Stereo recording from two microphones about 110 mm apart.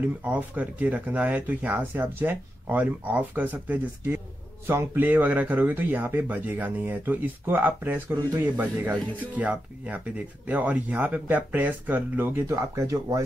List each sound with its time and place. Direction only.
0.0 s speech: 15° right (ahead or behind)